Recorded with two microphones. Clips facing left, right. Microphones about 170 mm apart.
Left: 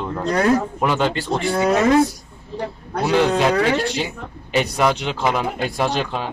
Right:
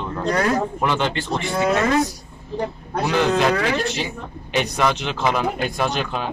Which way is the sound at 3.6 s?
35° left (ahead or behind).